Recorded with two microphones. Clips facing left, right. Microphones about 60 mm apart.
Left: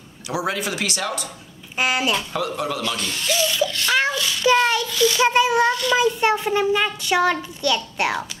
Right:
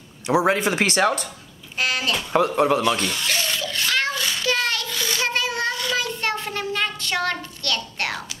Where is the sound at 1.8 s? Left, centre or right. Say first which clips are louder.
Left 3 dB; centre.